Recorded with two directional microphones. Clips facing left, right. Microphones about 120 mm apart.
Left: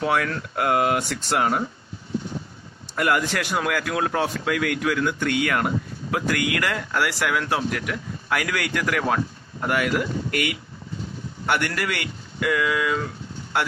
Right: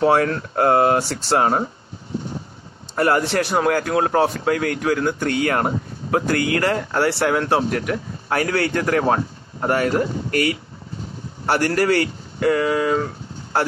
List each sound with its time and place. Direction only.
0.0 s speech: 35° right (ahead or behind)
3.0 s speech: 35° right (ahead or behind)